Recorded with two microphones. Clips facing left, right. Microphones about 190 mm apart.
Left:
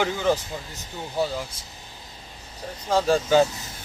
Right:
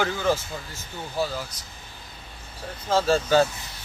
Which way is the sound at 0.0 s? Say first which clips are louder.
Left 1 dB; 15° left (ahead or behind).